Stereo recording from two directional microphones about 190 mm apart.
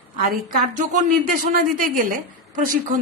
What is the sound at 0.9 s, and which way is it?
A woman's voice, 45° right (ahead or behind).